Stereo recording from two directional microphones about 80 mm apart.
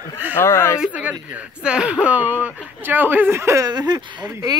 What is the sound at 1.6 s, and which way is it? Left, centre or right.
Speech, centre.